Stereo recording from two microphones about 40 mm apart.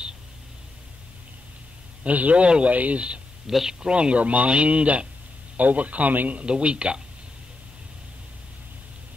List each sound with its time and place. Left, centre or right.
2.0 s speech: right
3.4 s speech: centre
3.8 s speech: right
6.4 s speech: right